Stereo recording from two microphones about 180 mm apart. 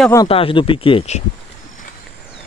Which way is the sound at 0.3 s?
30° left (ahead or behind).